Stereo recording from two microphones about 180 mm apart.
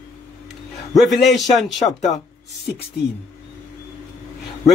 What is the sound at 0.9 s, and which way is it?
Speech, centre (ahead or behind).